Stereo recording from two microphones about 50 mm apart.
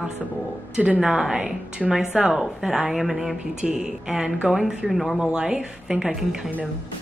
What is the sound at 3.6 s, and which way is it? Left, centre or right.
Speech, centre.